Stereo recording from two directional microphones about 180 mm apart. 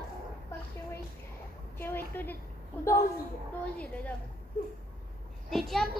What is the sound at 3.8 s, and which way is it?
Speech, 5° left (ahead or behind).